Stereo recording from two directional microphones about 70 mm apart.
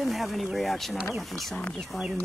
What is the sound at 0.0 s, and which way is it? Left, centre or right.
Speech, centre.